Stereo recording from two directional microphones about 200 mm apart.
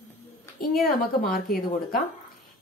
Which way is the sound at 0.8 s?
45° left (ahead or behind).